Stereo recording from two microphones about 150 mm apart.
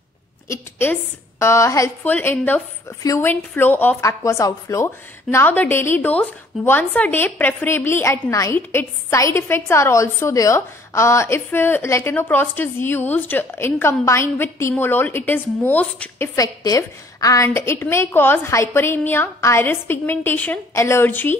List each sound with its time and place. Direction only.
0.5 s a sound: 15° left (ahead or behind)
1.4 s a woman's voice: 20° left (ahead or behind)
16.3 s a woman's voice: 25° left (ahead or behind)